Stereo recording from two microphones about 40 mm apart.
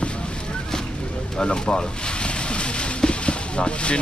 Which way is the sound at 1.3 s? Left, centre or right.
Left.